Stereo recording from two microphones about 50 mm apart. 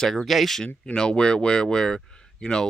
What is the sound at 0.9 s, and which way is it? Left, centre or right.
Speech, centre.